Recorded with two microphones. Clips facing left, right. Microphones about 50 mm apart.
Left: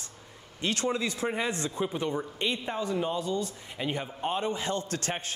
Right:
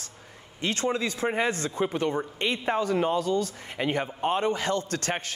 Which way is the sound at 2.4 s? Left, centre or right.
Right.